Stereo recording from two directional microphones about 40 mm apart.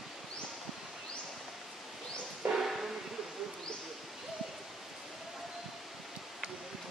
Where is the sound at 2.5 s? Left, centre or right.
Centre.